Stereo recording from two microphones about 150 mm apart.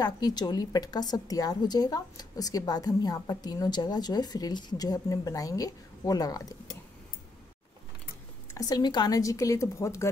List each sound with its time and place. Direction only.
0.0 s a woman's voice: 30° left (ahead or behind)
8.5 s a woman's voice: 25° left (ahead or behind)